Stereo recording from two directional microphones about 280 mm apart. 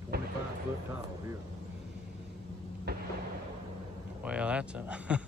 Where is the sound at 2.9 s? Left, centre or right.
Right.